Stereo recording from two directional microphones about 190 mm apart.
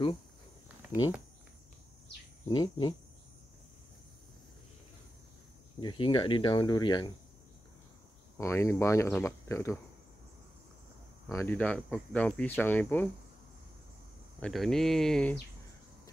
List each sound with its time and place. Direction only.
0.8 s a sound: 10° right (ahead or behind)
2.4 s speech: 20° left (ahead or behind)
5.8 s speech: 25° left (ahead or behind)
8.4 s speech: 15° left (ahead or behind)
11.2 s speech: 10° left (ahead or behind)
14.4 s speech: centre (ahead or behind)